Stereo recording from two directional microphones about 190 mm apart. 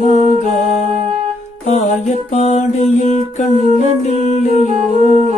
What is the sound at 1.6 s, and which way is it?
Music, 35° left (ahead or behind).